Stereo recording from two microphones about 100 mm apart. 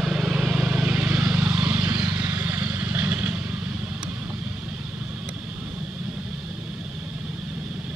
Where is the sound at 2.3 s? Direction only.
20° right (ahead or behind).